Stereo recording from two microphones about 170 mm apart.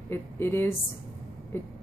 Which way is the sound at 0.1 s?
15° left (ahead or behind).